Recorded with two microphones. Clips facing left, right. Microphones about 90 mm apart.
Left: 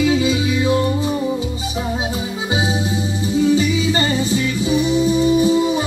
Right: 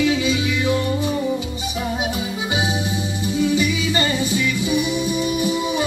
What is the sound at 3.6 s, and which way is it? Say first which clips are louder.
Music: left 3 dB; 25° left (ahead or behind).